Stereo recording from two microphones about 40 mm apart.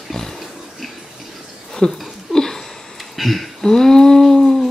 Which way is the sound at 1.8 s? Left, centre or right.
Centre.